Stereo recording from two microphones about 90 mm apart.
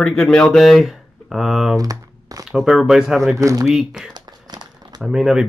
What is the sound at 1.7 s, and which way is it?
Speech, 40° right (ahead or behind).